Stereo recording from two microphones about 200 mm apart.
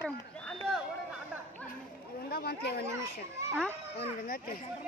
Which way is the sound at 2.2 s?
50° left (ahead or behind).